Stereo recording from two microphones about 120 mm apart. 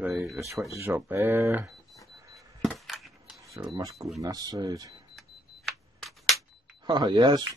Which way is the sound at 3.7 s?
30° right (ahead or behind).